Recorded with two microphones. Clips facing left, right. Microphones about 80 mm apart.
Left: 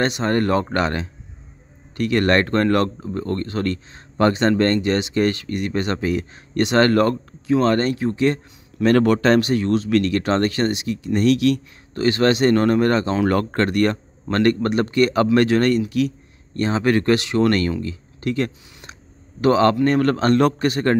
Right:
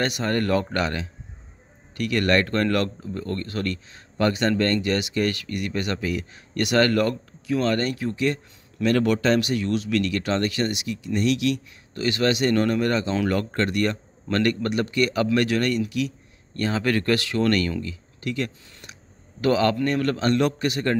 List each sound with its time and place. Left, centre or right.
0.0 s speech: left
14.2 s speech: left
16.5 s speech: left